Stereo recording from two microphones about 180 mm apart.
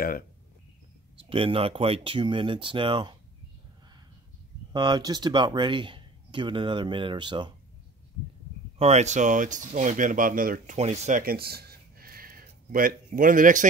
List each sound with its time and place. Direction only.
1.1 s speech: 30° right (ahead or behind)
4.7 s speech: 25° right (ahead or behind)
8.7 s speech: 35° right (ahead or behind)